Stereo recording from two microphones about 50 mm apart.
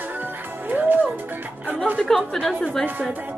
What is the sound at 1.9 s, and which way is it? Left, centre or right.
Speech, centre.